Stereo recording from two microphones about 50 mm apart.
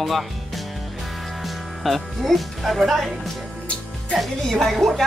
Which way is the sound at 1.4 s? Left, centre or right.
Centre.